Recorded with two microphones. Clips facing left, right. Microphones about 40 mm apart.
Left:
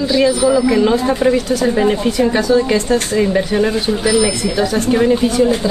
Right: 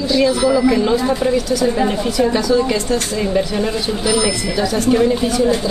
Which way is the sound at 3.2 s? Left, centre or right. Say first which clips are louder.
Left 4 dB; centre.